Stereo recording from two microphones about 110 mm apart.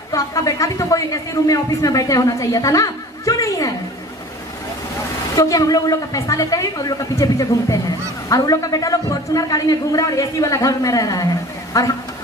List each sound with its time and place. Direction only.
0.1 s speech: 30° left (ahead or behind)
5.3 s a man's voice: 30° left (ahead or behind)